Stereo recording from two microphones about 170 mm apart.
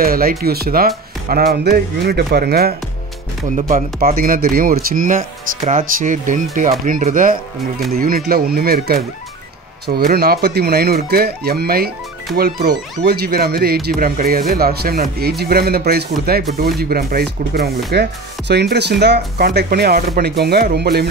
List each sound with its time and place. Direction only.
0.0 s speech: 60° right (ahead or behind)
3.4 s speech: 50° right (ahead or behind); by 17.7 s 65° right (ahead or behind)
18.5 s speech: 80° right